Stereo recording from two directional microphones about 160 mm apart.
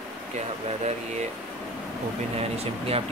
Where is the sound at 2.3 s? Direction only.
40° right (ahead or behind).